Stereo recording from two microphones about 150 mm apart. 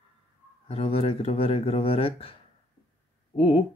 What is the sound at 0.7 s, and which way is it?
Speech, 40° left (ahead or behind).